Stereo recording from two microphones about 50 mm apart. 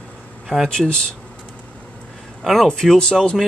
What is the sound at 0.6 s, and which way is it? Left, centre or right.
Speech, centre.